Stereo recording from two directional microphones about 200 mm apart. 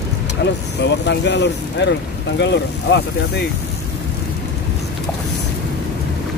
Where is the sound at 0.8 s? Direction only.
60° left (ahead or behind).